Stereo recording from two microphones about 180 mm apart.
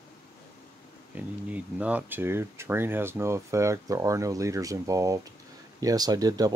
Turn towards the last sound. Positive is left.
turn(degrees=-20)  # may be behind; listen again after turning